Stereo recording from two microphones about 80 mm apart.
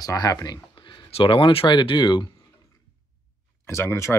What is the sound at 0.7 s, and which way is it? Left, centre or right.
Speech, left.